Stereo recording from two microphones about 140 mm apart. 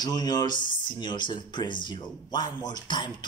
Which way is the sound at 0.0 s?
30° left (ahead or behind).